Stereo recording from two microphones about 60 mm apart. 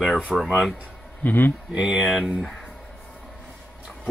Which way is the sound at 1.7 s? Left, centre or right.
Centre.